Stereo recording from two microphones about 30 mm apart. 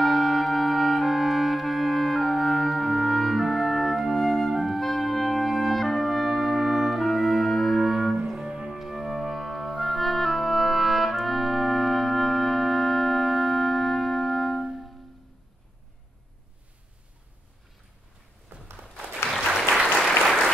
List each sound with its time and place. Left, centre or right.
0.0 s clarinet: centre
4.5 s music: centre
4.7 s music: centre
7.7 s music: centre
8.4 s music: right
8.7 s music: centre
9.2 s organ: centre
9.8 s clarinet: centre
20.0 s applause: centre